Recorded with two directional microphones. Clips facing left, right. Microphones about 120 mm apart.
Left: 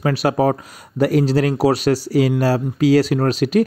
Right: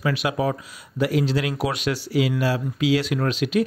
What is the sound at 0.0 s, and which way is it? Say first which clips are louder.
Speech: left 6 dB; 40° left (ahead or behind).